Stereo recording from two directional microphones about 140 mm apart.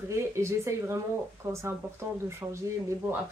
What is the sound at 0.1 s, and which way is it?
Speech, 20° right (ahead or behind).